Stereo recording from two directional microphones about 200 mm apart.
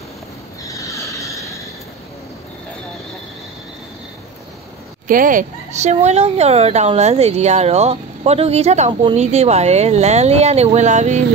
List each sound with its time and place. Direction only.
0.7 s vehicle: 15° left (ahead or behind)
5.0 s speech: 40° right (ahead or behind)